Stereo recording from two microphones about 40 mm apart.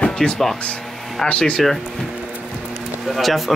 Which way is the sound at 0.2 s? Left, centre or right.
Centre.